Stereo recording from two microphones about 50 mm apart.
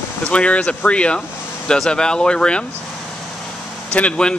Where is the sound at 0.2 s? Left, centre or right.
Left.